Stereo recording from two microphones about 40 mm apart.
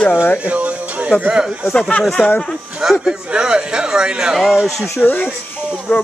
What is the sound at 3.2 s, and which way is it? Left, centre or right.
A man's voice, right.